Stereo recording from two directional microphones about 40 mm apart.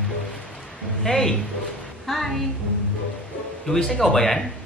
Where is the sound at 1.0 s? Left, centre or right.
Centre.